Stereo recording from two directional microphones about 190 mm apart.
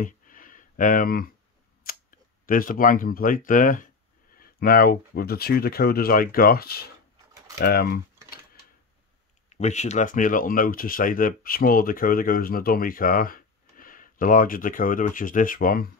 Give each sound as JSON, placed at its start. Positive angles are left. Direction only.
{"t": 0.0, "sound": "a sound", "side_deg": 45}
{"t": 1.9, "sound": "speech", "side_deg": 45}
{"t": 9.5, "sound": "speech", "side_deg": 35}